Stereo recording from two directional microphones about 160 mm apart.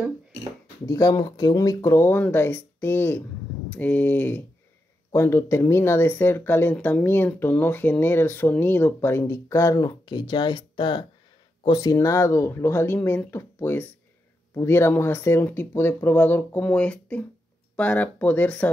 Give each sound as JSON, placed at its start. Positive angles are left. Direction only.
{"t": 0.8, "sound": "speech", "side_deg": 20}